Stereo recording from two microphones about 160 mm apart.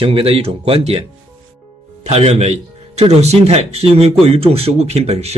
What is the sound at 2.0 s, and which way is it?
Speech, 40° right (ahead or behind).